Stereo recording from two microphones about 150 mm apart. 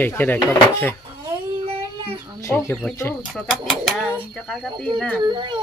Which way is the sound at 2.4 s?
20° left (ahead or behind).